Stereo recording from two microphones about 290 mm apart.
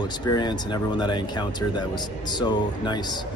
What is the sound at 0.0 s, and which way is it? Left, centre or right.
Speech, centre.